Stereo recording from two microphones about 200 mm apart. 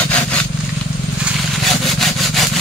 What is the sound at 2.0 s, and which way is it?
Sawing, centre (ahead or behind).